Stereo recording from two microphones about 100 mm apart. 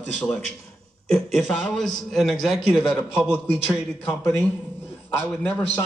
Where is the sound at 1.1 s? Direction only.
Centre (ahead or behind).